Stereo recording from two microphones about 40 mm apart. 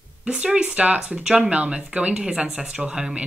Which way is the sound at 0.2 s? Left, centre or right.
Right.